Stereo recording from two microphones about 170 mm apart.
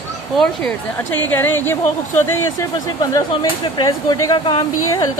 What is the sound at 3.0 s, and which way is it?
Speech, 25° left (ahead or behind).